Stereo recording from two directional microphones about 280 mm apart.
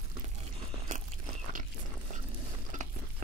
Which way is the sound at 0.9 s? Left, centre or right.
Right.